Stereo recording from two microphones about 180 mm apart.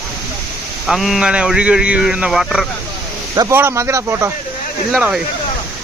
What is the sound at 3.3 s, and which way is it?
A man's voice, 15° right (ahead or behind).